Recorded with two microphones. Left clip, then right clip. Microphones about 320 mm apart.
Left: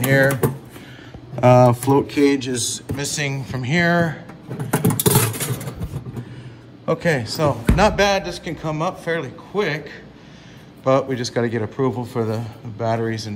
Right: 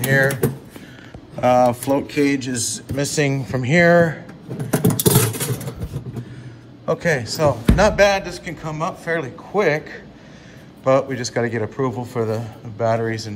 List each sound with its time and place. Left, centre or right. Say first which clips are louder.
0.0 s speech: left 1 dB; centre
1.4 s speech: left 2 dB; centre
5.0 s a sound: right 1 dB; centre
6.9 s a man's voice: even; centre